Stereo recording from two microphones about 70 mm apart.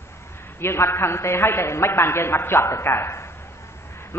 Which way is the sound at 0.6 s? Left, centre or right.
Left.